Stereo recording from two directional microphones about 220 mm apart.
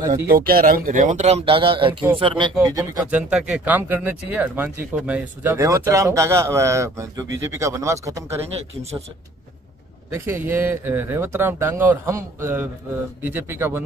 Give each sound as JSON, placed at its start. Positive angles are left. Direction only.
{"t": 0.3, "sound": "speech", "side_deg": -40}
{"t": 10.1, "sound": "speech", "side_deg": -10}